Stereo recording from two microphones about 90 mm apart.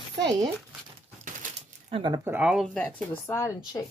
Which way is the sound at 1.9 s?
90° right.